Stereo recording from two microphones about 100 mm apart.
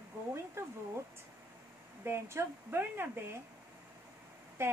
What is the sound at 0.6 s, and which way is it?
Speech, 25° right (ahead or behind).